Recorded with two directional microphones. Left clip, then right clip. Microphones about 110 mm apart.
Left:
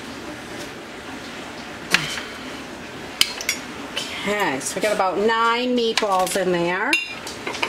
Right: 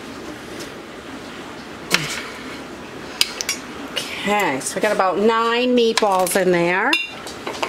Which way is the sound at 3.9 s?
30° right (ahead or behind).